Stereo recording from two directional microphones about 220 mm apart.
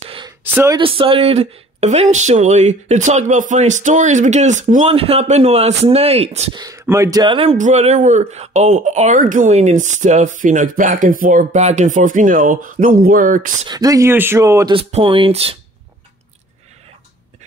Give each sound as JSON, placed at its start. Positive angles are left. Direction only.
{"t": 0.4, "sound": "speech", "side_deg": -10}
{"t": 0.7, "sound": "speech", "side_deg": -25}
{"t": 13.7, "sound": "speech", "side_deg": -15}
{"t": 14.8, "sound": "speech", "side_deg": -25}